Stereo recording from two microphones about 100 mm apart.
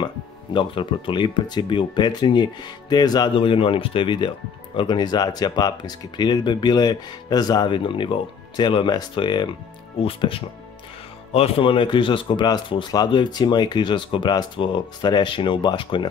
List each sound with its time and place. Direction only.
0.0 s speech: 55° left (ahead or behind)
3.3 s speech: 60° left (ahead or behind)